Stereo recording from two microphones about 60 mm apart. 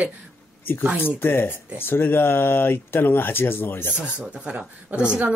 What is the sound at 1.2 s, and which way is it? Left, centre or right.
Speech, left.